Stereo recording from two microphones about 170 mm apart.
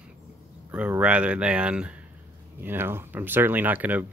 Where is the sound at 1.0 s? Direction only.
5° right (ahead or behind).